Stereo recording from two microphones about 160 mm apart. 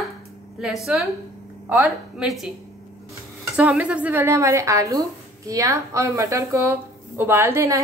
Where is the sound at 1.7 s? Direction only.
5° right (ahead or behind).